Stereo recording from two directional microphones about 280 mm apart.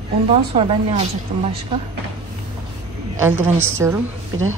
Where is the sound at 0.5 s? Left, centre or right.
Centre.